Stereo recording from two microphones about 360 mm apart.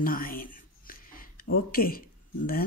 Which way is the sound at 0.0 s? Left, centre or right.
Left.